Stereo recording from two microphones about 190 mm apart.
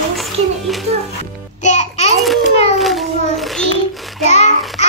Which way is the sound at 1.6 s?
35° left (ahead or behind).